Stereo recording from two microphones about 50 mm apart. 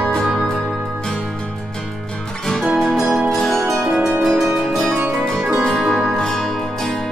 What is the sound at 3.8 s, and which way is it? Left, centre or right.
Music, right.